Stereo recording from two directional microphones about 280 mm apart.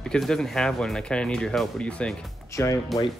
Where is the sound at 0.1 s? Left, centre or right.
Centre.